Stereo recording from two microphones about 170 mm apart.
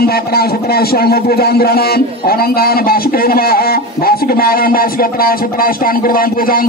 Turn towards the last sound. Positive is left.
turn(degrees=55)  # may be behind; listen again after turning